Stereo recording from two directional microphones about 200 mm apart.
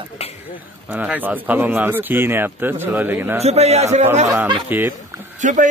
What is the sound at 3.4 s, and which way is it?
Speech, 30° right (ahead or behind).